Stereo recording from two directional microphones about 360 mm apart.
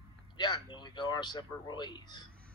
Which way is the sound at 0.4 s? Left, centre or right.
Centre.